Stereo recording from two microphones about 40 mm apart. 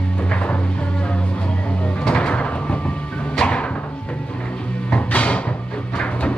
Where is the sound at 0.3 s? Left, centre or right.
Left.